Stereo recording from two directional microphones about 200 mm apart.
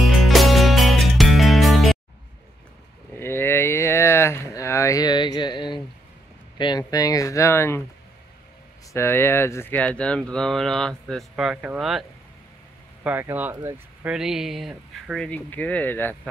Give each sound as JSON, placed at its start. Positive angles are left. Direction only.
{"t": 0.0, "sound": "music", "side_deg": 0}
{"t": 3.2, "sound": "speech", "side_deg": 10}
{"t": 8.9, "sound": "speech", "side_deg": 10}